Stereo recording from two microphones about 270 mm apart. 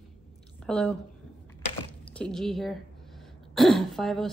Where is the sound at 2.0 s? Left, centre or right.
Centre.